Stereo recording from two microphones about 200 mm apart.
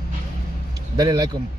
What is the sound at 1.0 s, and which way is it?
Speech, 20° right (ahead or behind).